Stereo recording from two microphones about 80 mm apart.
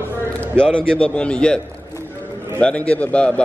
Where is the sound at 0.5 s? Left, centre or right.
Centre.